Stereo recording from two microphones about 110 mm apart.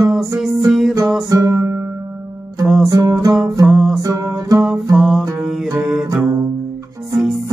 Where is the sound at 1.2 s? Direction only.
35° right (ahead or behind).